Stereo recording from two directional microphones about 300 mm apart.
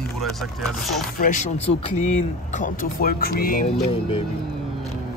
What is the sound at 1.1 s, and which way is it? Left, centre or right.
Speech, left.